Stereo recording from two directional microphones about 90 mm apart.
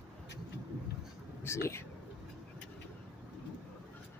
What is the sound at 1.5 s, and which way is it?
Speech, 30° left (ahead or behind).